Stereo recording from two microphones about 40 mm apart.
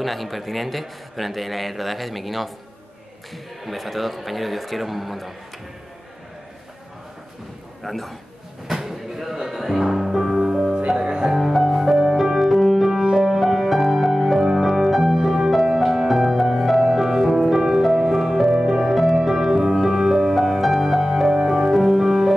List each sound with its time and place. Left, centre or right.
0.0 s a man's voice: centre
3.6 s a man's voice: centre
7.8 s a man's voice: centre
8.6 s music: centre
11.3 s music: centre